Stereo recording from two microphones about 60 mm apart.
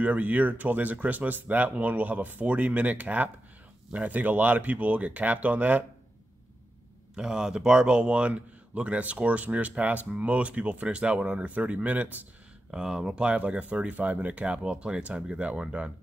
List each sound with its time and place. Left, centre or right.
0.0 s speech: right
7.2 s speech: centre; by 12.2 s right
12.7 s speech: centre